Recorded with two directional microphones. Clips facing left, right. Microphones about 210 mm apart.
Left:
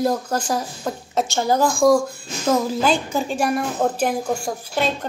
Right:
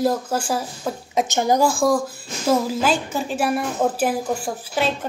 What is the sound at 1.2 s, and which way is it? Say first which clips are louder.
Speech: right 1 dB; 20° right (ahead or behind).